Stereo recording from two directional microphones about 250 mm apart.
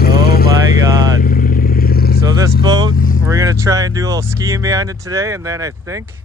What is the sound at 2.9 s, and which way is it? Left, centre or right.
Vehicle, left.